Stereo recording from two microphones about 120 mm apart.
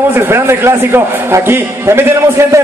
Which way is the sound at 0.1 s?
20° right (ahead or behind).